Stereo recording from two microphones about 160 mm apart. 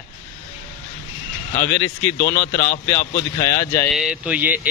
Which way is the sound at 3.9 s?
5° right (ahead or behind).